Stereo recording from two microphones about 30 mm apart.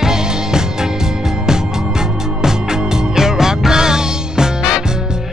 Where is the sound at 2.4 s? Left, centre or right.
Centre.